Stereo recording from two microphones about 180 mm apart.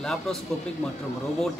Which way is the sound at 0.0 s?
5° left (ahead or behind).